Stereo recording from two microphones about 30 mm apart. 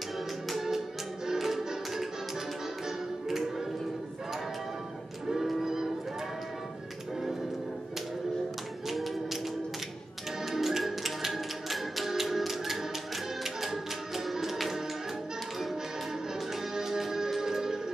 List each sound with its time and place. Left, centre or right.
1.2 s music: centre
3.3 s music: centre
5.3 s music: centre
5.6 s music: centre
8.8 s tap: centre
10.4 s music: centre
16.7 s music: centre